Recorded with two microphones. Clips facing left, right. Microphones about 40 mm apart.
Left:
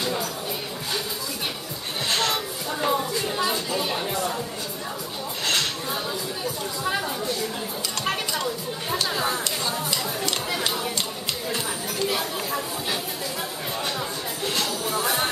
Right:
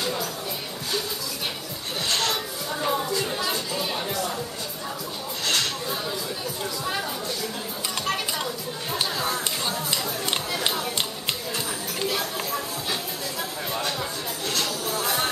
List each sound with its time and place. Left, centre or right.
0.0 s a sound: centre
2.0 s music: centre
3.3 s music: centre
9.1 s chatter: centre
12.1 s a sound: centre
13.7 s music: centre